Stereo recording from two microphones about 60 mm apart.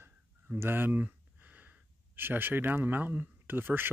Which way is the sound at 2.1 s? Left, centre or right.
Right.